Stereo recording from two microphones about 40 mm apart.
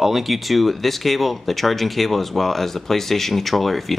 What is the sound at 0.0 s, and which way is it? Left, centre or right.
Speech, centre.